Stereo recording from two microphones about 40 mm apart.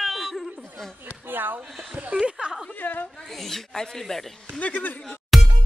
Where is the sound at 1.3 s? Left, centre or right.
Right.